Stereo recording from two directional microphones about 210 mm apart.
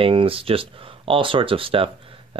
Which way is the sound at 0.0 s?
25° right (ahead or behind).